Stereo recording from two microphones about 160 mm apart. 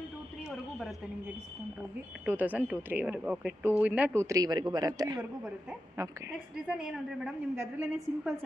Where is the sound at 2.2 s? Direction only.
10° right (ahead or behind).